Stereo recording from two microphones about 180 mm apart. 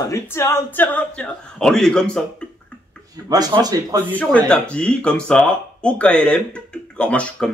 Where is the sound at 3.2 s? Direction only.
20° right (ahead or behind).